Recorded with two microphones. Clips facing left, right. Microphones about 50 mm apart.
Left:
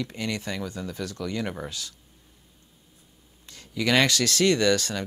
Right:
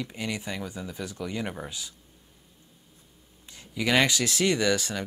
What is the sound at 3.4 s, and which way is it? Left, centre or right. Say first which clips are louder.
Speech: left 2 dB; centre.